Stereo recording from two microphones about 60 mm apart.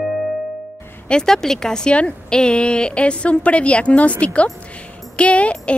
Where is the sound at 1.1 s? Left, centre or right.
Centre.